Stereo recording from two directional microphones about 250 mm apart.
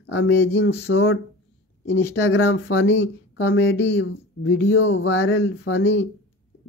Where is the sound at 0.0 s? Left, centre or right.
Left.